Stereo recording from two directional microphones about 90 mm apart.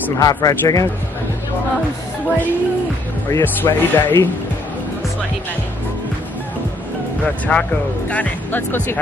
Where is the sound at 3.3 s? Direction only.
25° left (ahead or behind).